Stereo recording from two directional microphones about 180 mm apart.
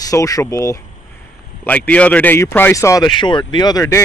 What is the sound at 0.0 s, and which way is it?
Speech, 20° left (ahead or behind).